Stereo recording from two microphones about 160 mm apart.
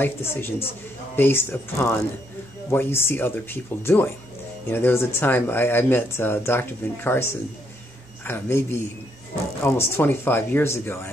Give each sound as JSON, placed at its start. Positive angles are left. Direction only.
{"t": 0.0, "sound": "speech", "side_deg": 15}